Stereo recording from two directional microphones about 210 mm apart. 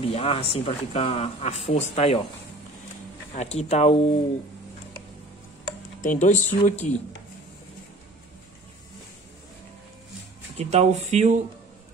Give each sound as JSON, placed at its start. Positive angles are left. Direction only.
{"t": 0.0, "sound": "speech", "side_deg": 30}
{"t": 3.3, "sound": "speech", "side_deg": 30}
{"t": 5.9, "sound": "speech", "side_deg": 35}
{"t": 10.6, "sound": "speech", "side_deg": -30}